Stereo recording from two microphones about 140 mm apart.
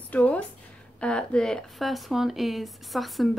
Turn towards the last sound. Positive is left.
turn(degrees=0)  # may be behind; listen again after turning